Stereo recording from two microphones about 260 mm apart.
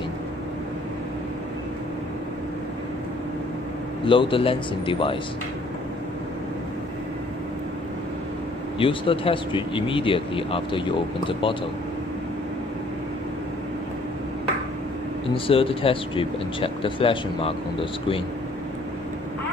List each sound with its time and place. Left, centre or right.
4.0 s speech: centre
8.7 s speech: centre
15.3 s speech: left